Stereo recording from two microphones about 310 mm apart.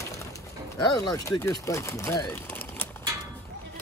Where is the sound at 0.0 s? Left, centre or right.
Centre.